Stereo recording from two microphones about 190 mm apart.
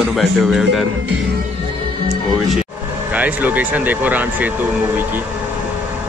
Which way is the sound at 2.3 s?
Centre (ahead or behind).